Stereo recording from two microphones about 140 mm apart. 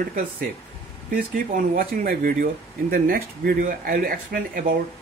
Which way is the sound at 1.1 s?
85° right.